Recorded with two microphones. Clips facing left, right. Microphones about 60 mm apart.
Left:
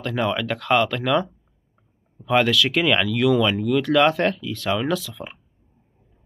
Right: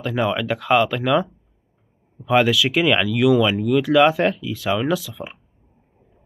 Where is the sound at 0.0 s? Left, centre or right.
Centre.